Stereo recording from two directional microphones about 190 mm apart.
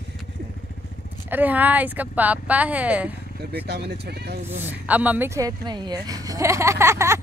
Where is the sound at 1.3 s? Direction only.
10° right (ahead or behind).